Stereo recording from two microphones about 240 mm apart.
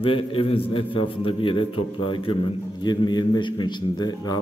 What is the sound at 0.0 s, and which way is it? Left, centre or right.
A man's voice, left.